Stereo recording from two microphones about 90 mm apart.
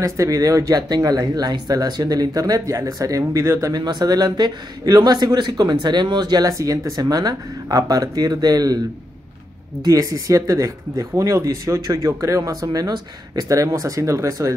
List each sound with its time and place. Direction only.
0.0 s speech: 40° right (ahead or behind)
3.8 s speech: 50° right (ahead or behind)
9.8 s speech: 40° right (ahead or behind)